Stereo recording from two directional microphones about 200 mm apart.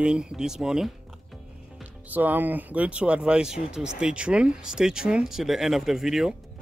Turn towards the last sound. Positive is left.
turn(degrees=0)  # may be behind; listen again after turning